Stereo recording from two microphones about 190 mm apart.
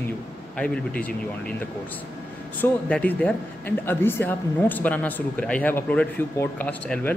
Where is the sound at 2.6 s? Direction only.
10° left (ahead or behind).